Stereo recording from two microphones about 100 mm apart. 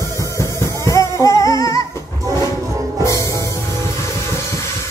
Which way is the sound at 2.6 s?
35° right (ahead or behind).